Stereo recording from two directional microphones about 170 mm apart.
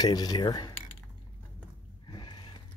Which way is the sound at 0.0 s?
25° left (ahead or behind).